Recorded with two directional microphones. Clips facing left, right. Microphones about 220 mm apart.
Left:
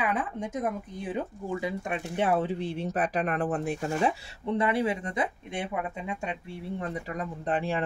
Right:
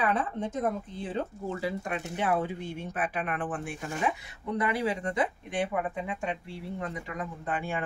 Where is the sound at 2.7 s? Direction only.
35° left (ahead or behind).